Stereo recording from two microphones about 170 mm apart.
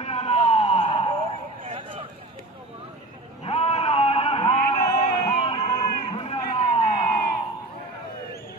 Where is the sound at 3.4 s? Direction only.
35° left (ahead or behind).